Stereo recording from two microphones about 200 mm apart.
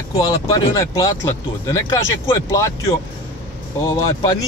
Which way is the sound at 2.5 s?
15° left (ahead or behind).